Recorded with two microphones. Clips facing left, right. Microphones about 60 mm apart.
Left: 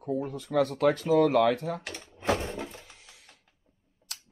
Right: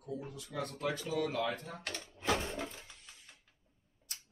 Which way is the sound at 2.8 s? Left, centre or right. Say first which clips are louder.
Left 3 dB; left.